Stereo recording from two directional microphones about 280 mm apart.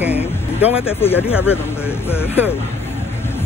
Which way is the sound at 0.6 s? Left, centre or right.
Centre.